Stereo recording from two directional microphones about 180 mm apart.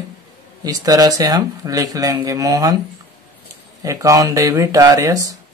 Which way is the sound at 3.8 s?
20° right (ahead or behind).